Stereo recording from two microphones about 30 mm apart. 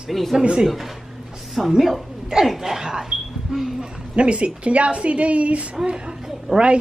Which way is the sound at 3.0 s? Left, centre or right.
Centre.